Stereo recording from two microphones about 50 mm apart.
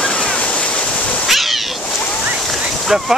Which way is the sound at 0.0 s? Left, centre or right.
Centre.